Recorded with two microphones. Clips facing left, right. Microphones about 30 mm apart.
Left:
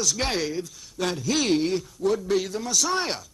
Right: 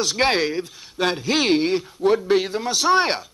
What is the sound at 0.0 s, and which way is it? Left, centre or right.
A man's voice, right.